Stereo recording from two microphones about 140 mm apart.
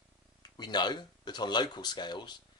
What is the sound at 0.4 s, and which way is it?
Speech, 30° left (ahead or behind).